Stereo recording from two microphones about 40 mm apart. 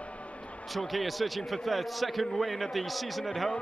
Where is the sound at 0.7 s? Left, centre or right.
Centre.